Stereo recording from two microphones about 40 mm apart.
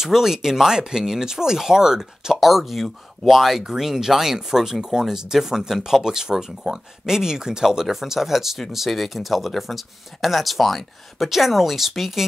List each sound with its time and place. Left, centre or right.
0.0 s speech: centre